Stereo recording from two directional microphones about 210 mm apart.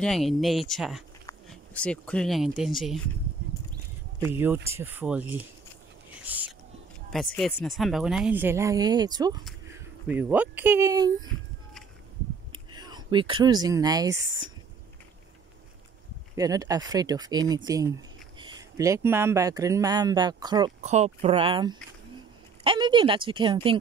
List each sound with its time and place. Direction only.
0.0 s speech: centre (ahead or behind)
4.3 s speech: 10° right (ahead or behind)
6.1 s whispering: 5° right (ahead or behind)
7.1 s speech: centre (ahead or behind); by 11.2 s 15° right (ahead or behind)
12.5 s speech: 20° right (ahead or behind)
16.3 s speech: 15° right (ahead or behind)
20.8 s speech: 30° right (ahead or behind)